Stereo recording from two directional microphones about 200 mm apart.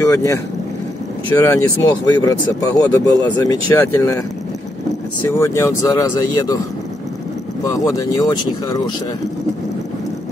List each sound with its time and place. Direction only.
0.1 s speech: 15° left (ahead or behind)
5.3 s speech: 15° left (ahead or behind)
7.6 s speech: 15° left (ahead or behind)